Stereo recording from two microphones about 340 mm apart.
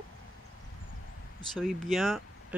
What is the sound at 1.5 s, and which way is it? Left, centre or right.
Speech, centre.